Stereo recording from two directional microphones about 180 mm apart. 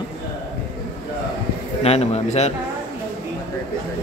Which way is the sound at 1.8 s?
35° left (ahead or behind).